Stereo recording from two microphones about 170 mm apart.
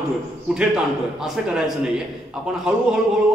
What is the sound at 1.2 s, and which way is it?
Speech, 5° right (ahead or behind).